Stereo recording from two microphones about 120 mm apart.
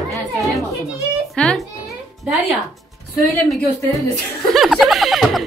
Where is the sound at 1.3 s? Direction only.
5° left (ahead or behind).